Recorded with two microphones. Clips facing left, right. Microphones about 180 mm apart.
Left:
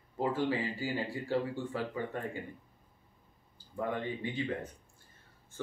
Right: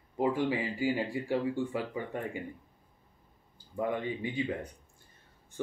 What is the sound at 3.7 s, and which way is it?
Speech, 15° right (ahead or behind).